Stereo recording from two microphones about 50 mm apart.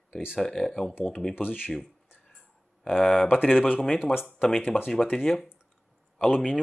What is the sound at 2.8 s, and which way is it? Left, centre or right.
Speech, centre.